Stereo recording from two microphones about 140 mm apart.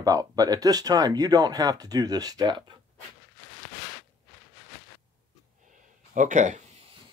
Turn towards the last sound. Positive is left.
turn(degrees=-60)  # may be behind; listen again after turning